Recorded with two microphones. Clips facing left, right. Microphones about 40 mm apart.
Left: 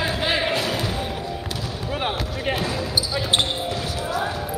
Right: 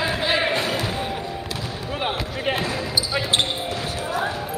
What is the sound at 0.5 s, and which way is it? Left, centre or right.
Basketball bounce, right.